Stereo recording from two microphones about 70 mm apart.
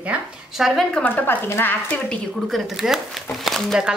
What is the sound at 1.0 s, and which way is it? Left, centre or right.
Speech, left.